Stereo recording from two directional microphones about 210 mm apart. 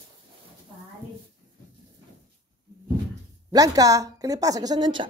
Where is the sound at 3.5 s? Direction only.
15° right (ahead or behind).